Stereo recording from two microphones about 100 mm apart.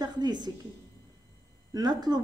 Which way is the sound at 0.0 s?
45° right (ahead or behind).